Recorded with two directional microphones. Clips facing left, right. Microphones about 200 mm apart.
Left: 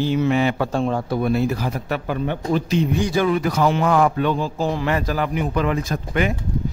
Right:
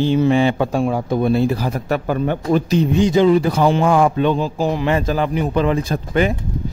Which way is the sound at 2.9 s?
20° right (ahead or behind).